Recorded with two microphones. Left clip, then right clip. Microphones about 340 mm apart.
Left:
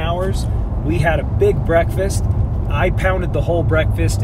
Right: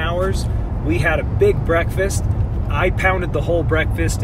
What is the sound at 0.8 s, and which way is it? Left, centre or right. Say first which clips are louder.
Speech: even; centre.